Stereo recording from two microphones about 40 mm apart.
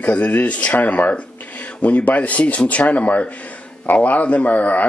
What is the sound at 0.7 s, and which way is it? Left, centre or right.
Speech, left.